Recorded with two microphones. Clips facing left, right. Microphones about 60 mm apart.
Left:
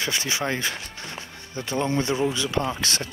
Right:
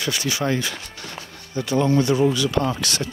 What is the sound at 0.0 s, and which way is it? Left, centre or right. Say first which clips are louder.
Speech: right 2 dB; left.